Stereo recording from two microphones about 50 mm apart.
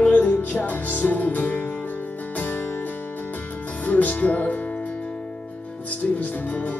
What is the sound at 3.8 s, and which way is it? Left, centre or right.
Music, left.